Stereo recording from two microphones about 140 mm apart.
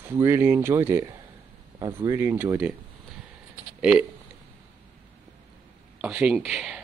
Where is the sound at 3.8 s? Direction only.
5° right (ahead or behind).